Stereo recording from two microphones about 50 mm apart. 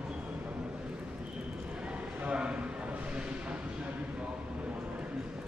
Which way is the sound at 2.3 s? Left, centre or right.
Right.